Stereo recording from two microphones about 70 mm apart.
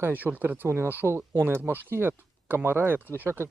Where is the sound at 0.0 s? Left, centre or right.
Right.